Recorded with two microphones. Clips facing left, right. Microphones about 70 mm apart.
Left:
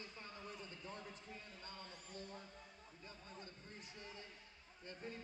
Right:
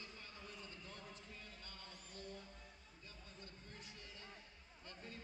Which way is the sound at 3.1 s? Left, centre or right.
Left.